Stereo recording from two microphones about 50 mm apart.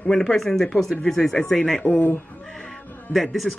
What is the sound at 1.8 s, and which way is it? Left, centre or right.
Speech, left.